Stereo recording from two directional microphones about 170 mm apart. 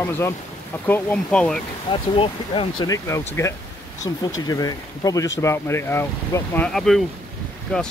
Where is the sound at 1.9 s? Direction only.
30° left (ahead or behind).